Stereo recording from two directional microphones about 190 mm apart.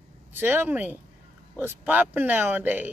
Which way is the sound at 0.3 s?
10° right (ahead or behind).